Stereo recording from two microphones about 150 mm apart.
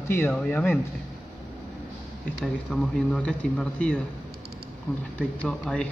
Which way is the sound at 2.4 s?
5° left (ahead or behind).